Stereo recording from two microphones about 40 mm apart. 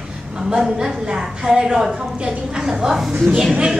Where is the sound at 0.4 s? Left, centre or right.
Centre.